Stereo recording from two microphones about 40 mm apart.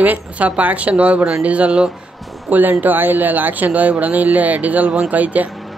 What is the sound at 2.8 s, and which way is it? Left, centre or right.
Speech, right.